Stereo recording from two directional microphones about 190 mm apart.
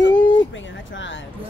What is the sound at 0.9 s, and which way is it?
Speech, 75° left (ahead or behind).